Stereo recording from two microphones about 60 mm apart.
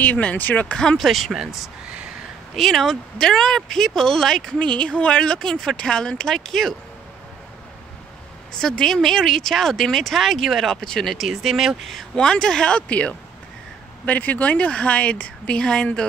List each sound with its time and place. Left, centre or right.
0.0 s a woman's voice: left
0.7 s speech: centre
0.9 s speech: centre
4.6 s speech: centre
8.5 s a woman's voice: centre